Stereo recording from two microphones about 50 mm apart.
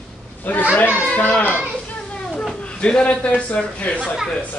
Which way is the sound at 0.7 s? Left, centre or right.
Left.